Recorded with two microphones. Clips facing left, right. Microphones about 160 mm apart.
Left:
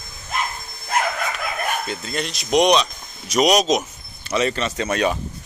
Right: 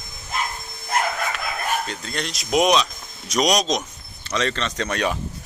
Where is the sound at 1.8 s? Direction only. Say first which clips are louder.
Left 3 dB; 5° left (ahead or behind).